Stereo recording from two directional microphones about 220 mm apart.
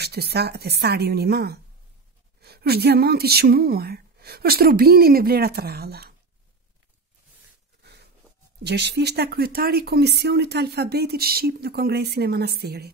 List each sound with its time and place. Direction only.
0.0 s speech: 45° right (ahead or behind)
7.8 s a sound: 50° right (ahead or behind)
8.6 s speech: 50° right (ahead or behind)